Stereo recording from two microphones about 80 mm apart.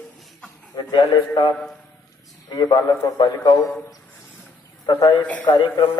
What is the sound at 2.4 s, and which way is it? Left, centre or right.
Speech, left.